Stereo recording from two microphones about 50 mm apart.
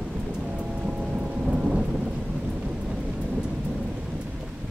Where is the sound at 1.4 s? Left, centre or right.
Centre.